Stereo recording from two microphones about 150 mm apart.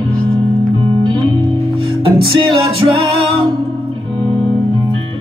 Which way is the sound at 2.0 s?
35° right (ahead or behind).